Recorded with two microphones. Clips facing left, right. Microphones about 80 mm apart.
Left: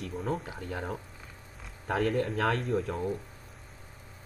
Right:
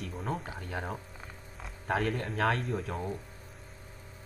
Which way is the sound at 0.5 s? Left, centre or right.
Right.